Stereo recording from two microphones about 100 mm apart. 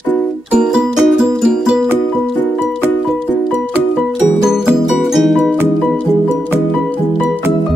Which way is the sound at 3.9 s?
5° right (ahead or behind).